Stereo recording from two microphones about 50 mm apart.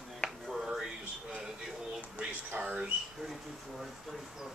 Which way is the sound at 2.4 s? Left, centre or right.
Right.